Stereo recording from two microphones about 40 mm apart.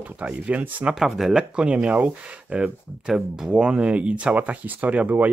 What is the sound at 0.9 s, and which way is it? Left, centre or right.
Speech, centre.